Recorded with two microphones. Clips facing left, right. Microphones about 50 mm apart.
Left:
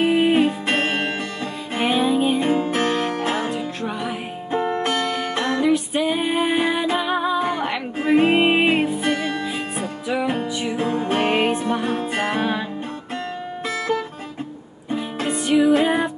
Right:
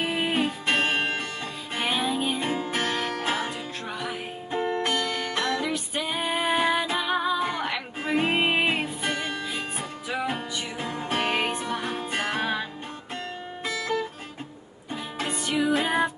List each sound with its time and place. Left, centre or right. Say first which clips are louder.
0.2 s music: left 8 dB; centre
2.5 s music: left 7 dB; left
2.9 s music: left 5 dB; left
4.8 s music: left 5 dB; left
7.3 s music: left 5 dB; left
10.8 s music: left 7 dB; left; by 12.6 s centre
15.3 s music: left 8 dB; centre